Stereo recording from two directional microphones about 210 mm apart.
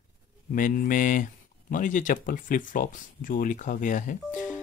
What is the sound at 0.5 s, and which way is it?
Speech, 40° left (ahead or behind).